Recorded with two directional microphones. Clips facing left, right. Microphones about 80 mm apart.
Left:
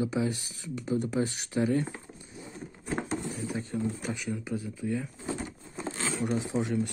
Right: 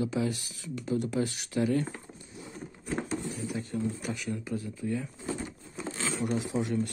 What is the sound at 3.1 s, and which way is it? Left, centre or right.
Speech, left.